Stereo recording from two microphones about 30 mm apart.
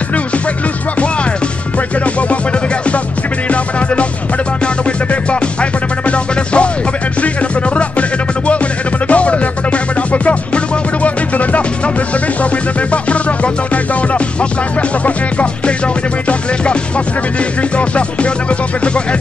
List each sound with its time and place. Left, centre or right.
3.4 s music: left
5.3 s music: left
9.0 s music: left
12.9 s music: left
17.7 s music: left